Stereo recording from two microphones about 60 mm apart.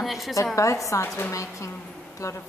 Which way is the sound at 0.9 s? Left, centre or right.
Left.